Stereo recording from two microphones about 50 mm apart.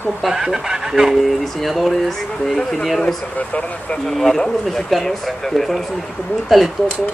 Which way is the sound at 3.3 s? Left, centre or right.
Left.